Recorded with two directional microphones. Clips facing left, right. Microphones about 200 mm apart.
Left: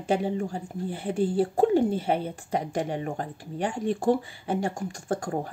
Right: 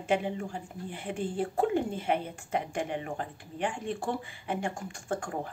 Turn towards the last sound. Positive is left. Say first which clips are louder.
# left 5 dB
turn(degrees=35)  # may be behind; listen again after turning